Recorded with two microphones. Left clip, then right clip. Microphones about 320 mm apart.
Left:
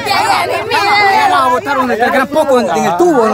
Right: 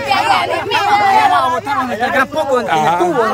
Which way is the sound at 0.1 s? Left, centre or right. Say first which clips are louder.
Left 1 dB; left.